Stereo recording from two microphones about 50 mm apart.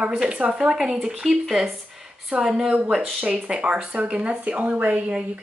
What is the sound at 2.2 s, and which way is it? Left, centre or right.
Speech, centre.